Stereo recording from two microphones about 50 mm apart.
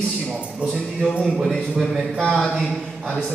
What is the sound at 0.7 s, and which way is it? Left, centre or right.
Speech, centre.